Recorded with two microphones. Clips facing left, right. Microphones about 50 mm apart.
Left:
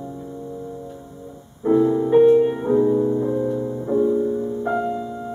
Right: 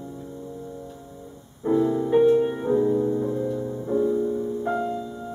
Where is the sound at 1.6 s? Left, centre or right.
Centre.